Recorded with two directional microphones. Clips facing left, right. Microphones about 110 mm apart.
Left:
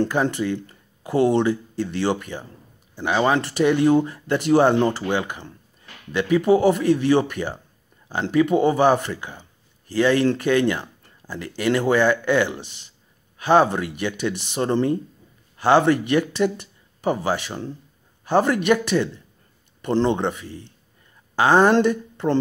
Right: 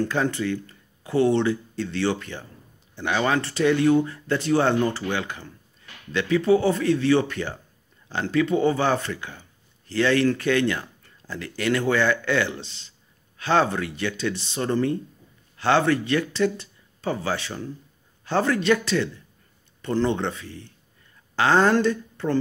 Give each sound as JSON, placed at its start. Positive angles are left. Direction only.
{"t": 0.0, "sound": "speech", "side_deg": 15}